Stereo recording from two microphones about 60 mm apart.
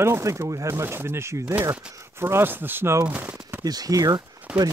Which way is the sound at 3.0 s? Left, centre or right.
Right.